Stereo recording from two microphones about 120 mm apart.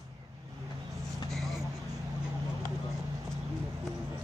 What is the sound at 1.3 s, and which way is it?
Vehicle, centre (ahead or behind).